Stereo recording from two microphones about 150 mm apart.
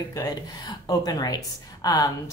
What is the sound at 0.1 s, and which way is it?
A woman's voice, 25° left (ahead or behind).